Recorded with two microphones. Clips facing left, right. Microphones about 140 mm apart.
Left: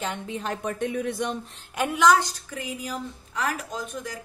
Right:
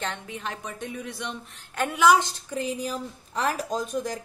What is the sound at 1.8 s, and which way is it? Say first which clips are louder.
Speech: left 1 dB; centre (ahead or behind).